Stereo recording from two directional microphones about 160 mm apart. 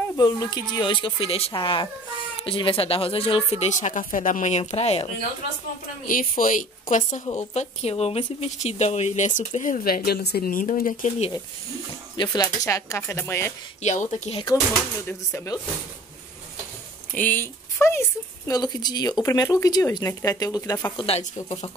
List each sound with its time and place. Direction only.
0.2 s speech: 25° left (ahead or behind); by 4.0 s 45° left (ahead or behind)
4.0 s speech: 55° left (ahead or behind); by 5.1 s 40° left (ahead or behind)
6.0 s a woman's voice: 60° left (ahead or behind)
12.2 s speech: 25° left (ahead or behind)
13.8 s speech: 45° left (ahead or behind)
14.7 s speech: 15° left (ahead or behind)
17.1 s speech: 10° left (ahead or behind)
20.9 s speech: 35° left (ahead or behind)